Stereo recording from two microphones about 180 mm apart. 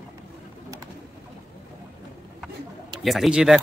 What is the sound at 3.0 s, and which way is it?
Speech, centre (ahead or behind).